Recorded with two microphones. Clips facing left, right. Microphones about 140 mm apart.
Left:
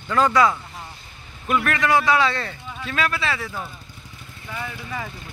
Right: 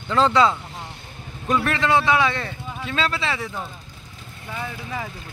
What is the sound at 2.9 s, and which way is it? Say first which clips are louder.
Speech: even; 25° right (ahead or behind).